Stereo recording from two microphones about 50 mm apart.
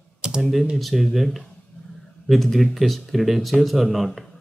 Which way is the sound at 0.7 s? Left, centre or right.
Centre.